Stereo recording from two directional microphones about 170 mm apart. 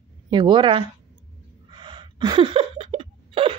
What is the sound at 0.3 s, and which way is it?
Speech, 25° right (ahead or behind).